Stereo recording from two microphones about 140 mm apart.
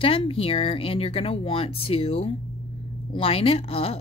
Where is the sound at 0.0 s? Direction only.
40° left (ahead or behind).